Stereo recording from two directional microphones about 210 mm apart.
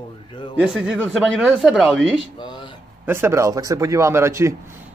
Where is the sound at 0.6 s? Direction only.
5° right (ahead or behind).